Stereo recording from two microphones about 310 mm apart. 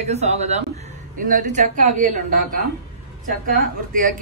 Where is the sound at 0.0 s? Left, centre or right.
Right.